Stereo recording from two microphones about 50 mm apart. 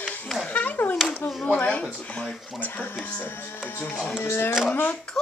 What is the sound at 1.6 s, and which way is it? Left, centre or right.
Speech, left.